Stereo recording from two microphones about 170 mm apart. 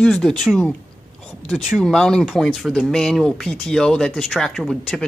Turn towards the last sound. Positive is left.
turn(degrees=0)  # may be behind; listen again after turning